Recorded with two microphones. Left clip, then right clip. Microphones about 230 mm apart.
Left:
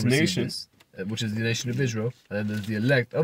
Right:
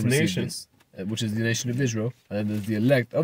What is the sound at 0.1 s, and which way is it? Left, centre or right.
Speech, centre.